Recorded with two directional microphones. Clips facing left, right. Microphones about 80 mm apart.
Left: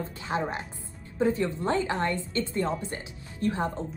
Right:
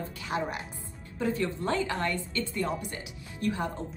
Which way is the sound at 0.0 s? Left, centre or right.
Left.